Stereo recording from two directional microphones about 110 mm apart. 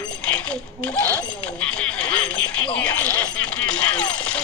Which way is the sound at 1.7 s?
10° left (ahead or behind).